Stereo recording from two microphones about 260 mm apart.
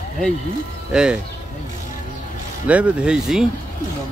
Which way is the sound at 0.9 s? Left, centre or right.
Centre.